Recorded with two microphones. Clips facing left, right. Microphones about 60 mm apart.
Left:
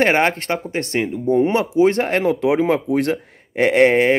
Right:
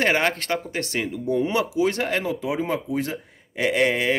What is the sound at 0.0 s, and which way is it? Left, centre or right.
Speech, left.